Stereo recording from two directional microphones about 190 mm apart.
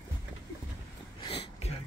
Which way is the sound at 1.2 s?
30° left (ahead or behind).